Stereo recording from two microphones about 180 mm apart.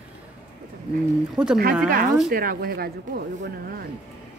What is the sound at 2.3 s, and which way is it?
Speech, 55° right (ahead or behind).